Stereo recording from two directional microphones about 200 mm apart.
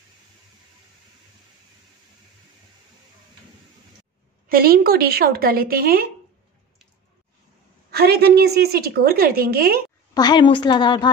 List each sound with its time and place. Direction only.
4.5 s a woman's voice: 50° right (ahead or behind)
7.9 s a woman's voice: 50° right (ahead or behind)
10.1 s a woman's voice: 20° left (ahead or behind)